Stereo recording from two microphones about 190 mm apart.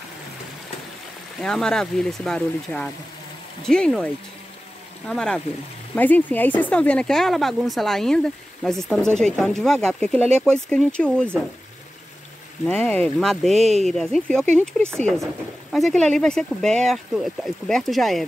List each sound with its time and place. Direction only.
1.4 s speech: 5° left (ahead or behind)
12.6 s speech: 10° left (ahead or behind)